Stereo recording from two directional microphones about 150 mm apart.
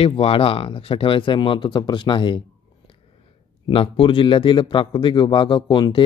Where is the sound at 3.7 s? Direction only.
35° left (ahead or behind).